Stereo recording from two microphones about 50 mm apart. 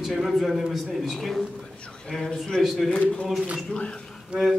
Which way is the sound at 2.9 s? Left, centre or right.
Left.